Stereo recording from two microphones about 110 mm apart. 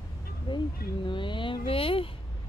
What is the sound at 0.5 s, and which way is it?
Speech, 45° left (ahead or behind).